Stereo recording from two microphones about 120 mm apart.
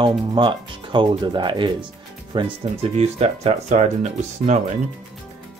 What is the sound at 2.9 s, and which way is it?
Speech, 60° right (ahead or behind).